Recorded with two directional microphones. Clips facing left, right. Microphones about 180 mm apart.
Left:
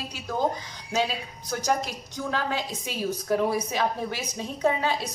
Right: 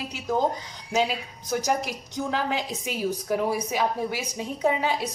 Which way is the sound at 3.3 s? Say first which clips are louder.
Left 3 dB; 10° right (ahead or behind).